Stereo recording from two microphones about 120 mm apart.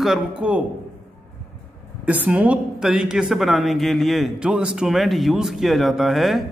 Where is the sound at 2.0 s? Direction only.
15° right (ahead or behind).